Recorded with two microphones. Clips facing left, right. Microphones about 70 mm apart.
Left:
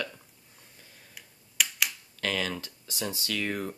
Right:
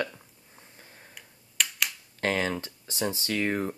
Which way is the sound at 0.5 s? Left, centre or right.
Right.